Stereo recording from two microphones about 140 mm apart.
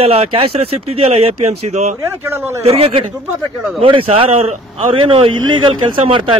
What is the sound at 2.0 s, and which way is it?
Speech, 20° right (ahead or behind).